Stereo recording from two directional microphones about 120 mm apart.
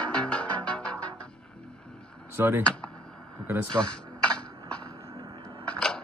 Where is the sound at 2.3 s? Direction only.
20° right (ahead or behind).